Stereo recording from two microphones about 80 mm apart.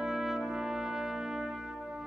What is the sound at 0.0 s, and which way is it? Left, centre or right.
Trumpet, centre.